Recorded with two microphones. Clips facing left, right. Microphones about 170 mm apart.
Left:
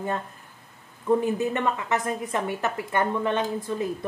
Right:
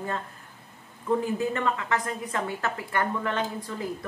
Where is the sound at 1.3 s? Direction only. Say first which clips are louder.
Left 2 dB; 20° left (ahead or behind).